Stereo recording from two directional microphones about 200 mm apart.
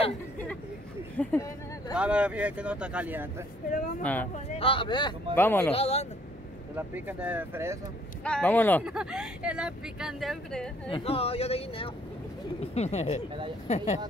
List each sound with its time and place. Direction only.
1.1 s speech: 10° left (ahead or behind)
2.0 s speech: 5° right (ahead or behind)
4.0 s speech: 10° left (ahead or behind)
4.5 s speech: 25° left (ahead or behind)
5.3 s speech: 10° left (ahead or behind)
5.7 s speech: 30° left (ahead or behind)
7.1 s speech: 10° right (ahead or behind)
8.2 s speech: 5° left (ahead or behind)
8.8 s speech: 5° right (ahead or behind)
10.9 s speech: 30° left (ahead or behind)